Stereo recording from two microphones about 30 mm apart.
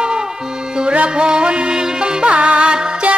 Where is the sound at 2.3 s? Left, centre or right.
Right.